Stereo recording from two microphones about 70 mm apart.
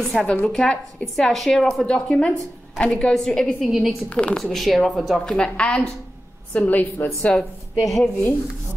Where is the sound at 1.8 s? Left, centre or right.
Centre.